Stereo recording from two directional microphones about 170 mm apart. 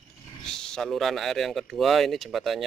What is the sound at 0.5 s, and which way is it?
Speech, 5° left (ahead or behind).